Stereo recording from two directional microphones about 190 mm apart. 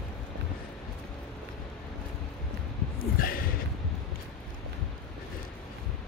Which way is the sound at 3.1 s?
50° left (ahead or behind).